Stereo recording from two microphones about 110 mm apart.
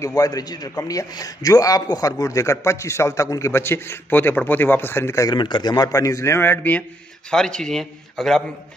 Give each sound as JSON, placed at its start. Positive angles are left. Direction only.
{"t": 0.0, "sound": "a man's voice", "side_deg": 35}
{"t": 5.3, "sound": "a man's voice", "side_deg": 45}
{"t": 7.2, "sound": "a man's voice", "side_deg": 5}